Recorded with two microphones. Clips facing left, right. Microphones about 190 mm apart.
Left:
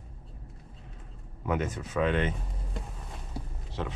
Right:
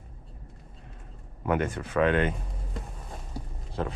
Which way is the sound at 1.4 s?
55° right (ahead or behind).